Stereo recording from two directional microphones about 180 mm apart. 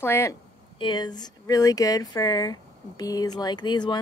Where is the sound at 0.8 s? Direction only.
25° left (ahead or behind).